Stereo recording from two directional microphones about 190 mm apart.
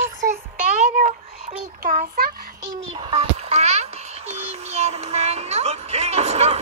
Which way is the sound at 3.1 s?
35° right (ahead or behind).